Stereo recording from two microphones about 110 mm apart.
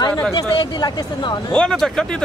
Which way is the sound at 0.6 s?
40° left (ahead or behind).